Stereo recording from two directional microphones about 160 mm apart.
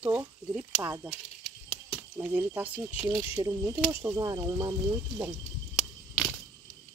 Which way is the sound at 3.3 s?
25° right (ahead or behind).